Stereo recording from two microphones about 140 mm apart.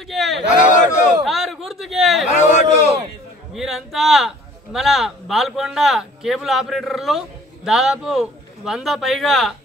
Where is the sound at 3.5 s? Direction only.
Centre (ahead or behind).